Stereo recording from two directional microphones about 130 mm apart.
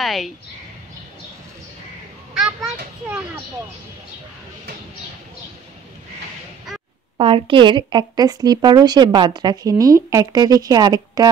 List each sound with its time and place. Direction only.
0.0 s speech: centre (ahead or behind)
2.3 s a child's voice: 5° right (ahead or behind)
7.2 s speech: 45° right (ahead or behind)